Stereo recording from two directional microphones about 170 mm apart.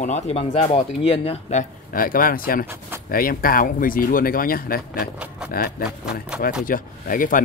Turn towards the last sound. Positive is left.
turn(degrees=55)  # may be behind; listen again after turning